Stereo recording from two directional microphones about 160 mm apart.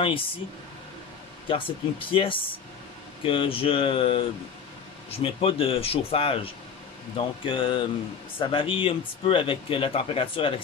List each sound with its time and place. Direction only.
1.5 s speech: 35° left (ahead or behind)